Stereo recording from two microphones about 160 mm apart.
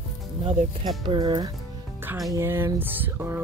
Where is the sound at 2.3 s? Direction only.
15° right (ahead or behind).